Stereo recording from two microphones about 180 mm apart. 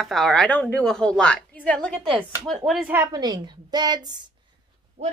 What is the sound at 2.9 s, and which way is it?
A woman's voice, 20° right (ahead or behind).